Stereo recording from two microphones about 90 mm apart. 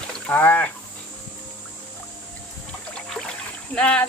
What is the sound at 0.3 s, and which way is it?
Speech, 20° left (ahead or behind).